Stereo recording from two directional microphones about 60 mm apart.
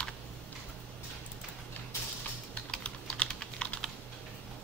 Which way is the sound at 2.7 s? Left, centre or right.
Centre.